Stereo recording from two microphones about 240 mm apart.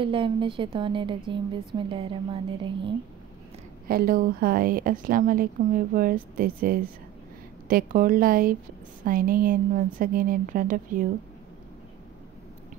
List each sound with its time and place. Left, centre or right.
0.0 s speech: right
3.8 s a woman's voice: right